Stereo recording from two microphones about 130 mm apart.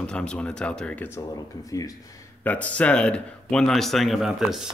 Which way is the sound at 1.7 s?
25° left (ahead or behind).